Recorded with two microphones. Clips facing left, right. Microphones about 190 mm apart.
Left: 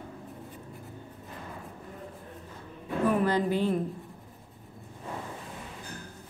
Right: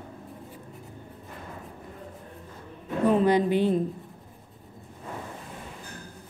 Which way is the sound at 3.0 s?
20° right (ahead or behind).